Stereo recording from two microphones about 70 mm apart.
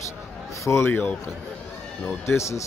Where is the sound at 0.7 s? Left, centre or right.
Left.